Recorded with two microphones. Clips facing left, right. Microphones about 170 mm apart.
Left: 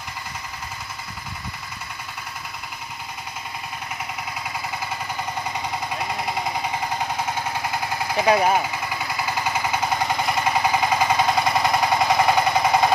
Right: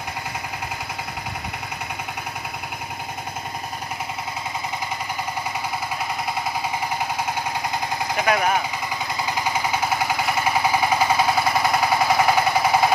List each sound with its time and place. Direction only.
8.3 s speech: 30° left (ahead or behind)
9.3 s jackhammer: 10° right (ahead or behind)